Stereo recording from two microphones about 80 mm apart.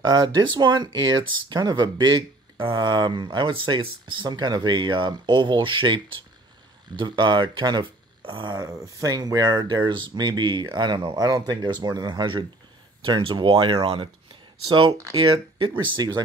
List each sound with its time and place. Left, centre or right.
0.0 s speech: right
7.0 s speech: right
8.6 s speech: right
13.0 s speech: right
14.9 s speech: right
15.1 s speech: right
16.0 s speech: right